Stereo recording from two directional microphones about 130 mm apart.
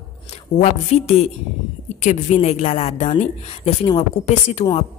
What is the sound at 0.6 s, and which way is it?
Speech, 55° left (ahead or behind).